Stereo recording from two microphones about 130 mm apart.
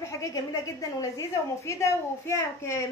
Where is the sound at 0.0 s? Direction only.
25° left (ahead or behind).